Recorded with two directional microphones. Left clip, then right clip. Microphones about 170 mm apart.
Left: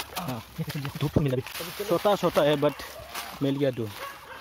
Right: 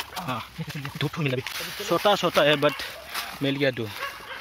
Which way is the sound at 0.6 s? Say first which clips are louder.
Even; 65° left (ahead or behind).